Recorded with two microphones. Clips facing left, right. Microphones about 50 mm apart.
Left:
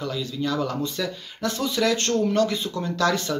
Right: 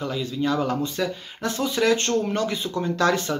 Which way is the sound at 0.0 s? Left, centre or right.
Centre.